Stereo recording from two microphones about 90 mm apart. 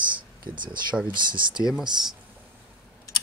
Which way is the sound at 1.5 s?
10° right (ahead or behind).